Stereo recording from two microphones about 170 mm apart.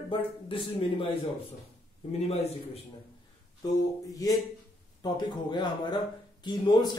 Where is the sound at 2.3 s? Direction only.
40° left (ahead or behind).